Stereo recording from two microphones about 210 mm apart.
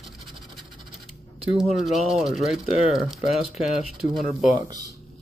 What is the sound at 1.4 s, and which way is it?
Speech, centre (ahead or behind).